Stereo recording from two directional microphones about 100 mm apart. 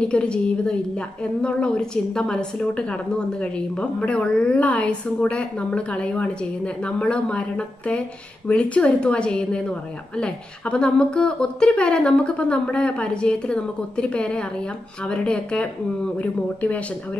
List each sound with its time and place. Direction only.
0.0 s a woman's voice: 10° left (ahead or behind)